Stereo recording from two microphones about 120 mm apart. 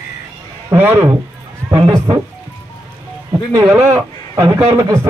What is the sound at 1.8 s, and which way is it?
Speech, 30° right (ahead or behind).